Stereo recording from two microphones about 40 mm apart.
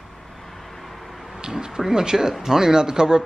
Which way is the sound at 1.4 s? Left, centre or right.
Centre.